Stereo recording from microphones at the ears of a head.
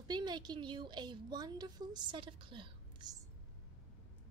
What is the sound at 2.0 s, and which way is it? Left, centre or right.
Speech, right.